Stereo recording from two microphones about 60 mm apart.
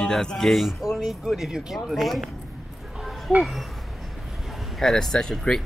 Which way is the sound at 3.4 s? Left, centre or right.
Centre.